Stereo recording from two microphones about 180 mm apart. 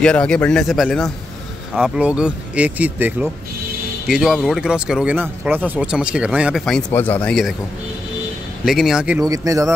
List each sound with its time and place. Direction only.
0.0 s speech: 5° left (ahead or behind)
8.6 s speech: centre (ahead or behind)
9.2 s speech: 20° right (ahead or behind)